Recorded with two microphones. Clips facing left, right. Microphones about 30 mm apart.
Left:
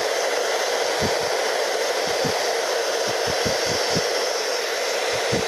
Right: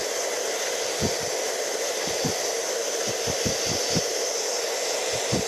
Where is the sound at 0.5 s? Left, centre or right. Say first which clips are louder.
Left 6 dB; left.